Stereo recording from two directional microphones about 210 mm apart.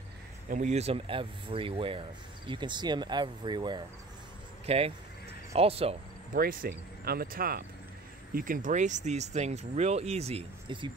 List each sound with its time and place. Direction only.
0.5 s speech: 35° right (ahead or behind)
6.3 s speech: 45° right (ahead or behind); by 10.9 s 25° right (ahead or behind)